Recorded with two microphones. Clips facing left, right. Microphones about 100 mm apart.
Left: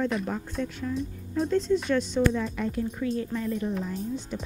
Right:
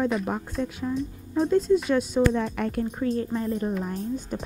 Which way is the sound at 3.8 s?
45° right (ahead or behind).